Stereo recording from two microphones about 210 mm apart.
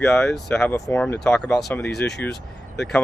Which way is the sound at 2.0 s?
55° left (ahead or behind).